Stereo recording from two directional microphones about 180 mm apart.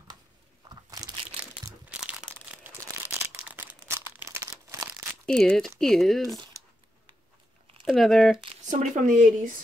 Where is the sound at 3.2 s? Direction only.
10° right (ahead or behind).